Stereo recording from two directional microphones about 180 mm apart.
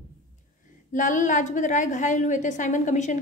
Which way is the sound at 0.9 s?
45° left (ahead or behind).